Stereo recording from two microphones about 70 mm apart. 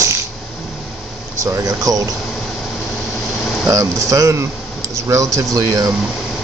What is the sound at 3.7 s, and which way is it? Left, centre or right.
Speech, right.